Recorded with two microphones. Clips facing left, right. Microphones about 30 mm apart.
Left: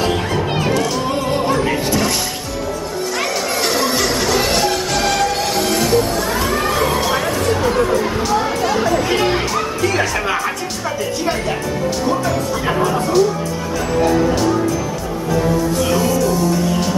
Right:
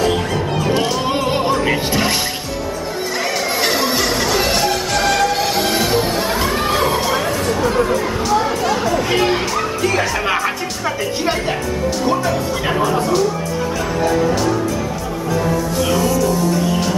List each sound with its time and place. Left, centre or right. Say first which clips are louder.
0.7 s music: right 1 dB; right
1.5 s music: even; centre
3.6 s music: even; centre
5.6 s music: left 4 dB; centre
7.1 s chatter: left 1 dB; centre
12.6 s music: right 1 dB; centre